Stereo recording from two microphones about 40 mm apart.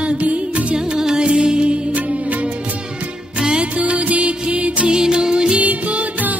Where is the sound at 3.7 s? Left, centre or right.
Right.